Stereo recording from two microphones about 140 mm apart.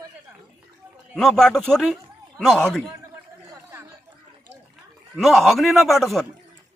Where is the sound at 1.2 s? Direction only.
5° left (ahead or behind).